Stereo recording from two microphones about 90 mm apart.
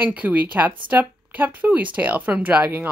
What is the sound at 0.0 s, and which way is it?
Speech, 15° right (ahead or behind).